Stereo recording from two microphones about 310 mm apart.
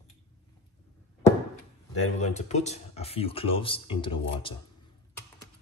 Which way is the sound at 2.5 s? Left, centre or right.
Left.